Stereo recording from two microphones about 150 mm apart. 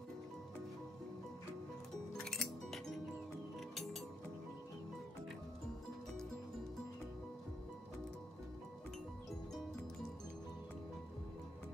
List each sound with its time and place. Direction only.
2.1 s music: 5° left (ahead or behind)